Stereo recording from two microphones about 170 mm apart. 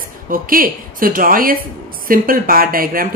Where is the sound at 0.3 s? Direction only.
55° right (ahead or behind).